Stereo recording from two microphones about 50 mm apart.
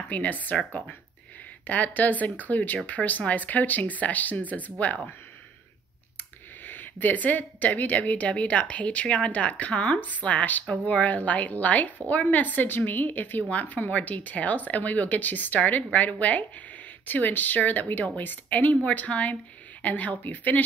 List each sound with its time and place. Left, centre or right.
0.1 s a woman's voice: left
6.6 s a woman's voice: left